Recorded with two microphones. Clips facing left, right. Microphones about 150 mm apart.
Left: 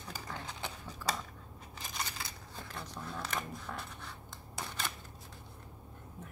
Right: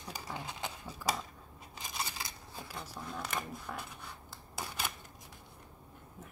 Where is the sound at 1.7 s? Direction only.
15° right (ahead or behind).